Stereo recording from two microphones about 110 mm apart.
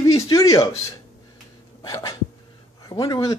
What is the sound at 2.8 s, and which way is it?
Speech, 35° left (ahead or behind).